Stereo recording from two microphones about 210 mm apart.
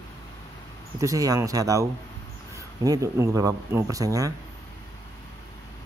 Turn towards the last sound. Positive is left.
turn(degrees=-15)  # may be behind; listen again after turning